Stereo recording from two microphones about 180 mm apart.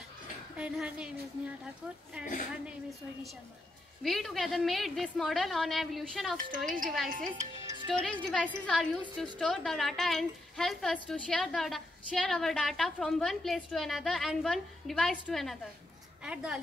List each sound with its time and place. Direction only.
0.6 s a woman's voice: 5° right (ahead or behind)
4.0 s a woman's voice: centre (ahead or behind)
6.6 s speech: 50° right (ahead or behind)
7.6 s music: 25° right (ahead or behind)
8.0 s a woman's voice: 5° left (ahead or behind)